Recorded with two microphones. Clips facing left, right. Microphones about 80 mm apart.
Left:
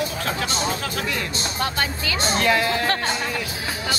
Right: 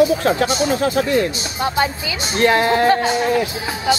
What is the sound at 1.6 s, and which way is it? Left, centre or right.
Speech, centre.